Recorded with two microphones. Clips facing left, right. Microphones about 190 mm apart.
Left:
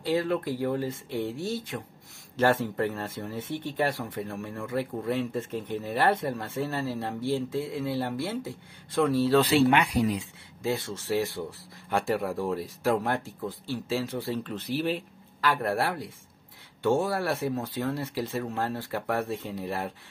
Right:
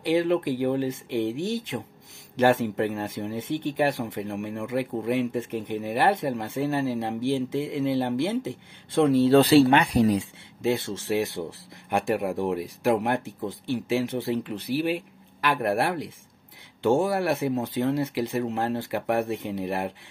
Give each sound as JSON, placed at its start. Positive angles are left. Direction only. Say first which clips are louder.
{"t": 0.0, "sound": "speech", "louder": "right 4 dB", "side_deg": -20}
{"t": 10.6, "sound": "speech", "louder": "right 4 dB", "side_deg": -25}